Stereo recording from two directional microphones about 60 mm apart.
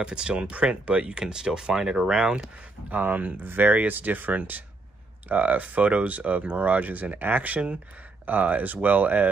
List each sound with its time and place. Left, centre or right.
0.0 s speech: centre
2.9 s speech: right